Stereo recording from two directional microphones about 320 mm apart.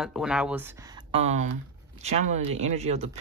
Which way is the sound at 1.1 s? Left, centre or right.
Right.